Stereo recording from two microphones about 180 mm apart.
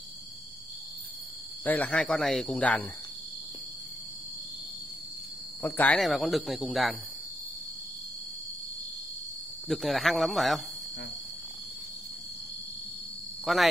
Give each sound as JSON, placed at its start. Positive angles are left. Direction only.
{"t": 1.6, "sound": "speech", "side_deg": 10}
{"t": 5.6, "sound": "speech", "side_deg": 10}
{"t": 9.7, "sound": "speech", "side_deg": 0}
{"t": 13.5, "sound": "speech", "side_deg": 0}